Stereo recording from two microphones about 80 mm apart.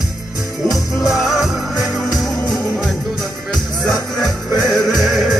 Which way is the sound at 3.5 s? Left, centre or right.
Centre.